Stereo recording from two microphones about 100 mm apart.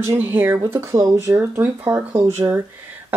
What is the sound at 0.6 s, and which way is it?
Speech, 30° right (ahead or behind).